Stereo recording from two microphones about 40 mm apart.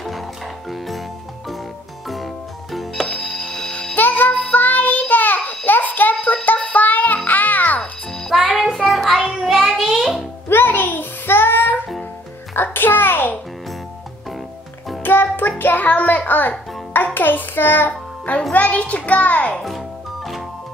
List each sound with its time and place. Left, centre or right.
0.7 s music: centre
2.0 s music: centre
3.9 s child singing: left
5.7 s music: left
8.4 s child singing: centre
10.5 s child singing: left
12.5 s a sound: left
15.0 s music: left
18.5 s music: left